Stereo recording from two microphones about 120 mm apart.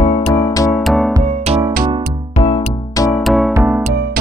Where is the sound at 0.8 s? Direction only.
Centre (ahead or behind).